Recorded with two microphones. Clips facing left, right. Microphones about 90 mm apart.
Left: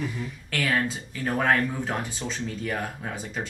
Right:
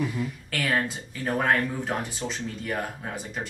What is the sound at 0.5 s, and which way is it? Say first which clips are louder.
Speech: left 2 dB; 5° right (ahead or behind).